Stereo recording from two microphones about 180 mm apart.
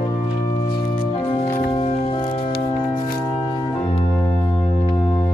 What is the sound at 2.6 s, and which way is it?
Music, 25° left (ahead or behind).